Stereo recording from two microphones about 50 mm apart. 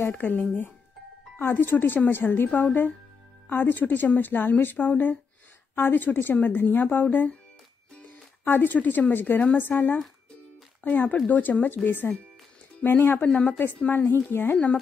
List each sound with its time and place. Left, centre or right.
0.2 s a woman's voice: left
8.5 s a woman's voice: left
13.2 s a woman's voice: left